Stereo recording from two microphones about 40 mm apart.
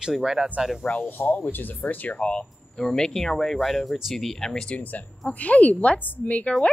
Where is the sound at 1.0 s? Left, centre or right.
Left.